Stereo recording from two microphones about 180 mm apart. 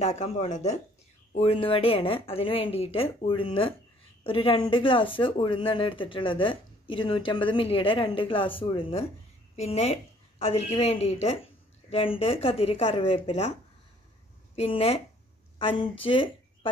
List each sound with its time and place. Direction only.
0.0 s a woman's voice: 40° left (ahead or behind)
14.5 s a woman's voice: 35° left (ahead or behind)
16.0 s speech: 30° left (ahead or behind)